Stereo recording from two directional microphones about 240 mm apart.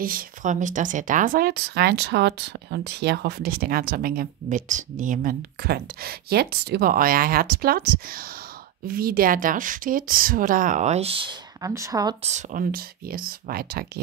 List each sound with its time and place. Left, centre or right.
0.0 s speech: right; by 12.3 s centre
12.3 s speech: right